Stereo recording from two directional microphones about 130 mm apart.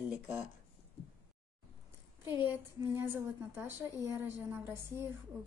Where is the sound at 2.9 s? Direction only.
15° right (ahead or behind).